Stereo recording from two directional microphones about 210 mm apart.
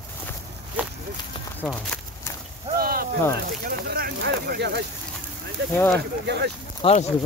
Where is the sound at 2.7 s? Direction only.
45° right (ahead or behind).